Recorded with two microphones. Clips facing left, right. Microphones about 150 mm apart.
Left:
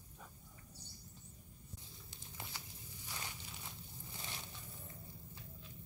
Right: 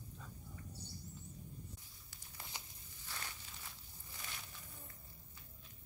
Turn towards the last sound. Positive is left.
turn(degrees=25)  # may be behind; listen again after turning